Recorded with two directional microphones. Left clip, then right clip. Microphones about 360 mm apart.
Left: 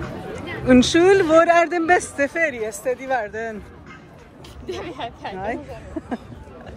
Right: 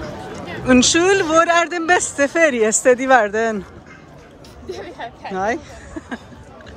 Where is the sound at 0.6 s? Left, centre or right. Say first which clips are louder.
Right 1 dB; centre.